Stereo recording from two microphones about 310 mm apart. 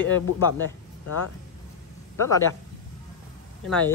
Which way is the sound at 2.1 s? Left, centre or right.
Centre.